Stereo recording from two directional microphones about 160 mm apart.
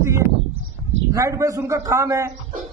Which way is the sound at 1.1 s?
20° right (ahead or behind).